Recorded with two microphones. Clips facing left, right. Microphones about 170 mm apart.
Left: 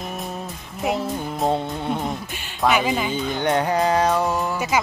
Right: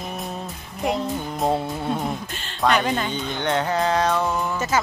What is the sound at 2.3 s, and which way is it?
Speech, 10° left (ahead or behind).